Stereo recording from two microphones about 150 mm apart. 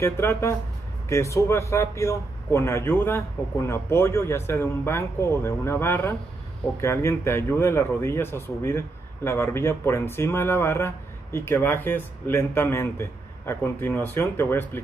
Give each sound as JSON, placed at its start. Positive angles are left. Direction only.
{"t": 0.0, "sound": "speech", "side_deg": 15}